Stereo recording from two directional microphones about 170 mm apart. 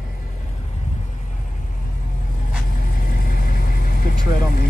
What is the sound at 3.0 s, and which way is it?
Vehicle, 55° left (ahead or behind).